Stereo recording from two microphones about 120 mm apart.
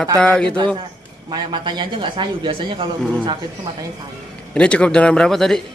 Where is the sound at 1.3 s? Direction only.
40° right (ahead or behind).